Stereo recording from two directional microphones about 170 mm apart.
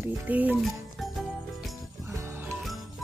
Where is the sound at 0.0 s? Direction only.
10° right (ahead or behind).